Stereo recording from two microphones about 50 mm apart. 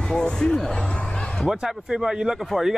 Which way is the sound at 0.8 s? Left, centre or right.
Centre.